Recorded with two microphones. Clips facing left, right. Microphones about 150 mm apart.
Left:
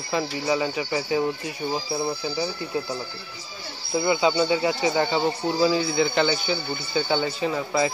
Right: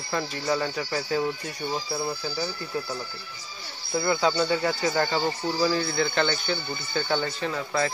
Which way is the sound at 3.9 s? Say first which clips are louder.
Left 3 dB; 5° left (ahead or behind).